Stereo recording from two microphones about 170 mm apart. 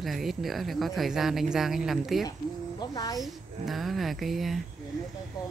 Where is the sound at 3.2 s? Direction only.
Centre (ahead or behind).